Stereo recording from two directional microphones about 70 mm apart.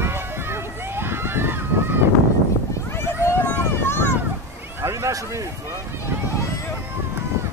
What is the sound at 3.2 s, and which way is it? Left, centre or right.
Vehicle, left.